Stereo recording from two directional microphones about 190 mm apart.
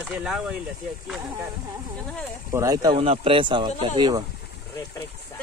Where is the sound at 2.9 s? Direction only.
30° right (ahead or behind).